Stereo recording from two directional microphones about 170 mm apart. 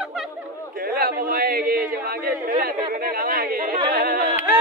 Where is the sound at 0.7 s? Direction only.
55° right (ahead or behind).